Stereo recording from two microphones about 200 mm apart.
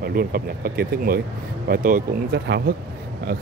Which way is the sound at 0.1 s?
45° right (ahead or behind).